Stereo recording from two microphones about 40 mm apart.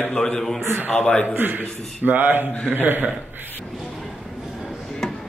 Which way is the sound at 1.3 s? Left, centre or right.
Right.